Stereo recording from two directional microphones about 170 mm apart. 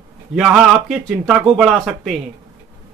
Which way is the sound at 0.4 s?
5° right (ahead or behind).